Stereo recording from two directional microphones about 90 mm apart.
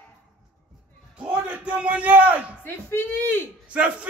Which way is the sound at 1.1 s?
10° right (ahead or behind).